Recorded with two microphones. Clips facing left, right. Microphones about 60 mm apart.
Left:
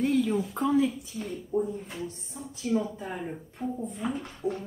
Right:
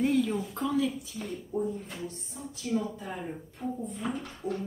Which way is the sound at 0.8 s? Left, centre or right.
Centre.